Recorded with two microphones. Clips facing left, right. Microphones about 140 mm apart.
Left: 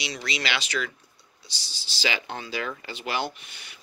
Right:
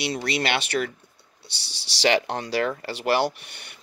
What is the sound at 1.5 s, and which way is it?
Speech, 65° right (ahead or behind).